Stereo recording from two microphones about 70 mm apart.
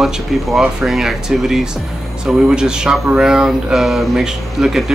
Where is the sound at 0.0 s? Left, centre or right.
Centre.